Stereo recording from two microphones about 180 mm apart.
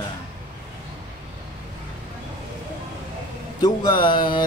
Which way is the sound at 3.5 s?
25° left (ahead or behind).